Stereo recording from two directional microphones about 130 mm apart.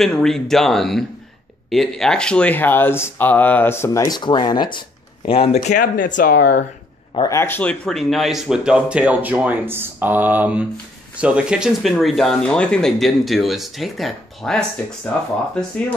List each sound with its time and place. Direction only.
0.0 s speech: 5° left (ahead or behind); by 6.6 s 90° left
7.2 s speech: 25° left (ahead or behind); by 14.6 s centre (ahead or behind)